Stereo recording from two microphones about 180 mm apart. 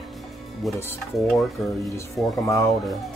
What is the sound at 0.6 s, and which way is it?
Speech, centre (ahead or behind).